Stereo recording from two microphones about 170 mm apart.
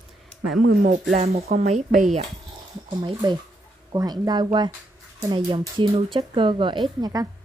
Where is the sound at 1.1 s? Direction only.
35° right (ahead or behind).